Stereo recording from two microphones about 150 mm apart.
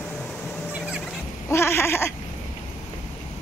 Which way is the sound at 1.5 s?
15° left (ahead or behind).